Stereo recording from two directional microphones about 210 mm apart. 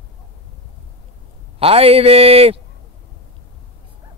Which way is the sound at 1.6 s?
25° right (ahead or behind).